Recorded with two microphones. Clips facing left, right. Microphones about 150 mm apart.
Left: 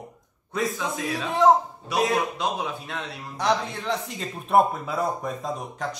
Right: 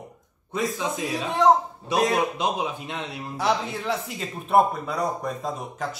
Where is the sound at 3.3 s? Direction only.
5° right (ahead or behind).